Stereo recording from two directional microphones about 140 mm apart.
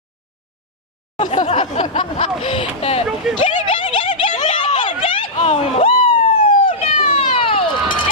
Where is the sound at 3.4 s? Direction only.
35° left (ahead or behind).